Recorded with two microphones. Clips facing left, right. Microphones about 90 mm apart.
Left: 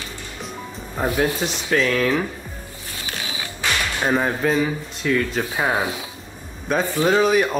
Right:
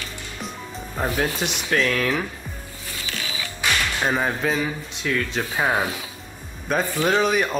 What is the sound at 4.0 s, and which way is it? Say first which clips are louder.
Speech: left 2 dB; 5° left (ahead or behind).